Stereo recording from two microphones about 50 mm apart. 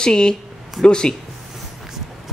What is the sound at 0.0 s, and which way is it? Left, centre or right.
Speech, centre.